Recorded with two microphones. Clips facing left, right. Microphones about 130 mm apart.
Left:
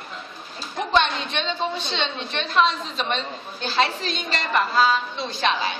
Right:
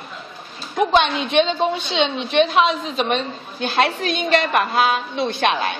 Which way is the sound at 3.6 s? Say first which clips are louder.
Right 4 dB; 55° right (ahead or behind).